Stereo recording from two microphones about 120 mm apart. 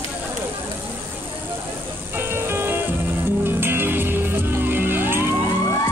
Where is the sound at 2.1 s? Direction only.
20° right (ahead or behind).